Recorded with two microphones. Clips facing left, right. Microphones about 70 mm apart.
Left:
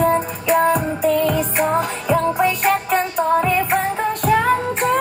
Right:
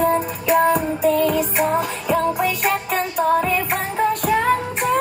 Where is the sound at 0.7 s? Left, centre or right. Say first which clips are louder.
Even; centre.